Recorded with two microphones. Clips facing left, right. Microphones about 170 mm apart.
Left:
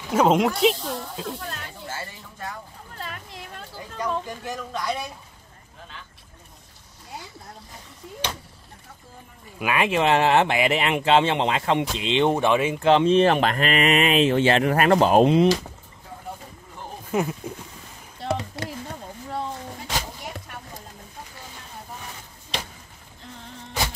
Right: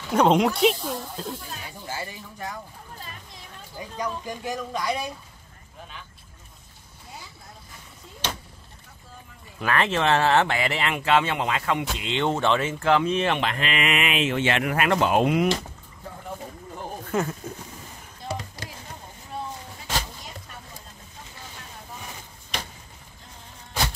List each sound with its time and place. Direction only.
0.1 s speech: 5° left (ahead or behind)
1.6 s music: 15° right (ahead or behind)
3.0 s a sound: 70° left (ahead or behind)
4.3 s speech: 15° right (ahead or behind)
9.6 s speech: 10° left (ahead or behind); by 15.4 s 30° left (ahead or behind)
17.1 s speech: 15° left (ahead or behind)
18.2 s a sound: 60° left (ahead or behind)